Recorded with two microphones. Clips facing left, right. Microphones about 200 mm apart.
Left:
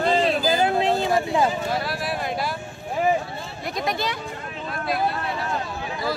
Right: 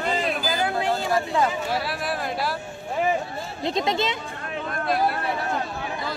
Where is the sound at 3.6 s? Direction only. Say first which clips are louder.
Right 3 dB; 25° right (ahead or behind).